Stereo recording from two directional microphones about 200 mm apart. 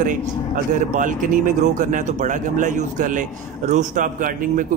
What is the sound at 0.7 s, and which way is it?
Speech, 40° right (ahead or behind).